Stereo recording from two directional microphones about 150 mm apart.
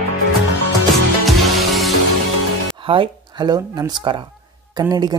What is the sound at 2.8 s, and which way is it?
Speech, 35° right (ahead or behind).